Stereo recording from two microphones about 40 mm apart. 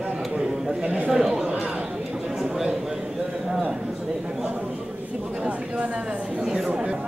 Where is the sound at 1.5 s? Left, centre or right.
Right.